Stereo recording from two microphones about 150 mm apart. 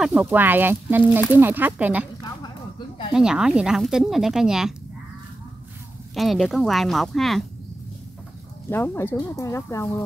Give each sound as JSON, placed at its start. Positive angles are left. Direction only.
{"t": 0.0, "sound": "speech", "side_deg": -10}
{"t": 3.1, "sound": "speech", "side_deg": -5}
{"t": 6.1, "sound": "speech", "side_deg": 0}
{"t": 8.6, "sound": "speech", "side_deg": 15}